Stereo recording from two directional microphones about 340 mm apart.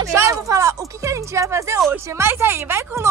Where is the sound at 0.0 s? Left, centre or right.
Centre.